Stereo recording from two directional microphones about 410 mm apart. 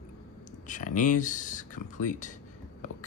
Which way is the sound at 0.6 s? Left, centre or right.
Centre.